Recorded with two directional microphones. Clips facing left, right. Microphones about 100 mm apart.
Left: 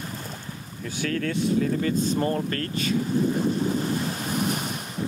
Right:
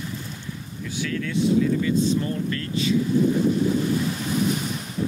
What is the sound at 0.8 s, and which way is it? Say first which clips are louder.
Speech: left 1 dB; 45° left (ahead or behind).